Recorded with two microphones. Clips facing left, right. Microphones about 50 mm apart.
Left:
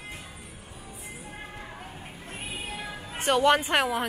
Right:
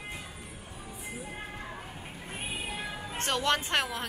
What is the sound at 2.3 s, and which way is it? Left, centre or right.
Music, centre.